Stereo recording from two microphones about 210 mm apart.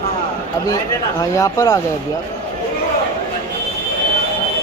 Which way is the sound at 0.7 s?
15° left (ahead or behind).